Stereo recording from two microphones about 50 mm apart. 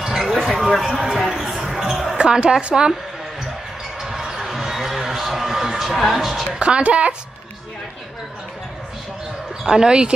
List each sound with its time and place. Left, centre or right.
0.0 s a sound: centre
0.9 s basketball bounce: centre
2.1 s speech: centre
4.0 s basketball bounce: centre
6.6 s speech: right
9.7 s speech: centre